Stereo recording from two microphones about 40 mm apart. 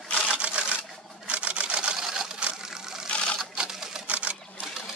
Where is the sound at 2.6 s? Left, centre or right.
Centre.